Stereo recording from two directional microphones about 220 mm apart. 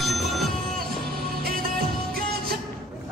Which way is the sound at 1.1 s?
40° right (ahead or behind).